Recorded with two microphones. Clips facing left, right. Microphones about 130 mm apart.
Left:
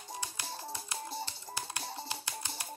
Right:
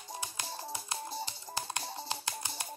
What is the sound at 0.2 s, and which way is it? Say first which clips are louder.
Music: right 1 dB; 20° right (ahead or behind).